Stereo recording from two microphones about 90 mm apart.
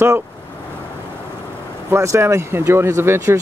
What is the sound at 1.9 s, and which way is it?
Speech, 30° right (ahead or behind).